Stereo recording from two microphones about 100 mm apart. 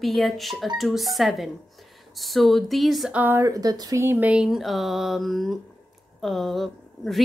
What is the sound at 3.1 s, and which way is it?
Speech, 20° right (ahead or behind).